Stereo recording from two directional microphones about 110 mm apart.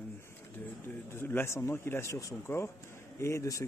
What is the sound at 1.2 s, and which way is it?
Speech, 20° left (ahead or behind).